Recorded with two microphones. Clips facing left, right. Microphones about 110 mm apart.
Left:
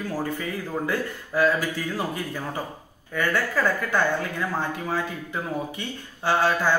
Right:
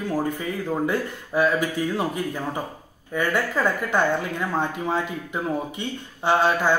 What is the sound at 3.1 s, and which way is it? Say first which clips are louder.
A woman's voice: right 1 dB; 20° right (ahead or behind).